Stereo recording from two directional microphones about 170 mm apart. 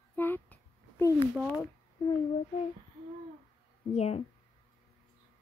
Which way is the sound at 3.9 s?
40° left (ahead or behind).